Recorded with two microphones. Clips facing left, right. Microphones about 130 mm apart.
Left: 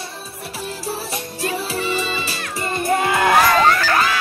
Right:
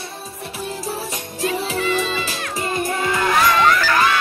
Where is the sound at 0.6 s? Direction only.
15° right (ahead or behind).